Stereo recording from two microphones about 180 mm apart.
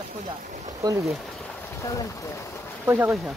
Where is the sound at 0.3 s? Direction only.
20° right (ahead or behind).